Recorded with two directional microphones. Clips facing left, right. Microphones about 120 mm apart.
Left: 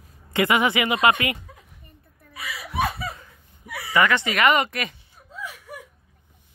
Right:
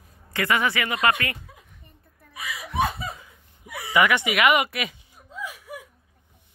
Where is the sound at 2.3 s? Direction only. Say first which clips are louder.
Even; 15° right (ahead or behind).